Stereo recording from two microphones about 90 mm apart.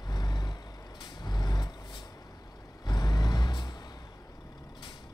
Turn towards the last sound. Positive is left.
turn(degrees=50)  # may be behind; listen again after turning